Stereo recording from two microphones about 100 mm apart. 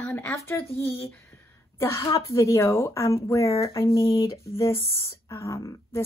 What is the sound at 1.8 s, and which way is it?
A woman's voice, 25° left (ahead or behind).